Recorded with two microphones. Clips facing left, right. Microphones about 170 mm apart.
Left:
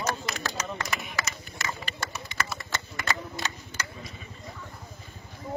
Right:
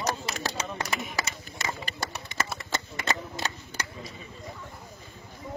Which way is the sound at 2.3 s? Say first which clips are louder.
Even; 45° right (ahead or behind).